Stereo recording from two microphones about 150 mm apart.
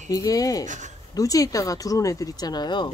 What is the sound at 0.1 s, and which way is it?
Speech, 25° left (ahead or behind).